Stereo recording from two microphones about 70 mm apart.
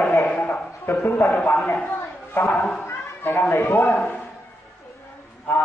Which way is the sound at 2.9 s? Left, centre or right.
Left.